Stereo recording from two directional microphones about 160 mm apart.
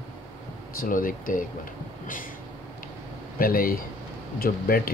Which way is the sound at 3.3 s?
65° left (ahead or behind).